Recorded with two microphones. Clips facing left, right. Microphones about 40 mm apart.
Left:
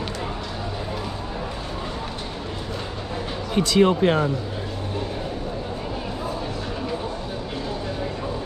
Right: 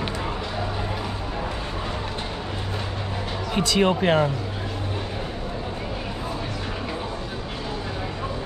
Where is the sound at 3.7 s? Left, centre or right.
Right.